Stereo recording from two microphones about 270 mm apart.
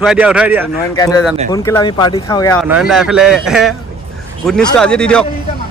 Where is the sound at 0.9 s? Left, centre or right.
Centre.